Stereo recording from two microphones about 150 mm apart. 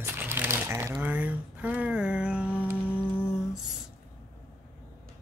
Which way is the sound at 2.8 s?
15° left (ahead or behind).